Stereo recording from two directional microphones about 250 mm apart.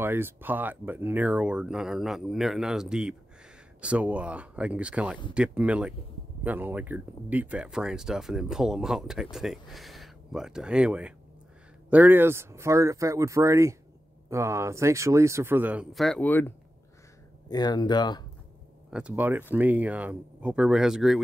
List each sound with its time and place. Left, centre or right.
0.0 s speech: centre
18.9 s speech: centre